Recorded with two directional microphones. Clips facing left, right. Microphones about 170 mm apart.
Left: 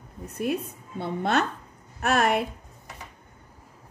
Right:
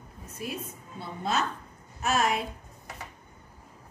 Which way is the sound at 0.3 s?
60° left (ahead or behind).